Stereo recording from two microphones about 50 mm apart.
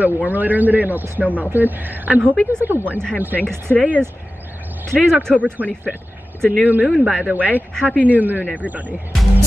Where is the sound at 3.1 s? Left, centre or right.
Right.